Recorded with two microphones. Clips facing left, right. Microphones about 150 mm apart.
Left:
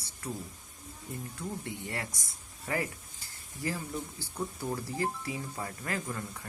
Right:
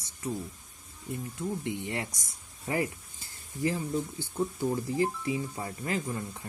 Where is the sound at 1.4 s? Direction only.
20° right (ahead or behind).